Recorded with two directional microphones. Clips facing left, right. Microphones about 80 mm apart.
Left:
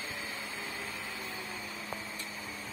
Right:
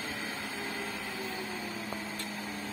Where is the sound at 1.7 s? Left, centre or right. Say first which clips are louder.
Right 3 dB; right.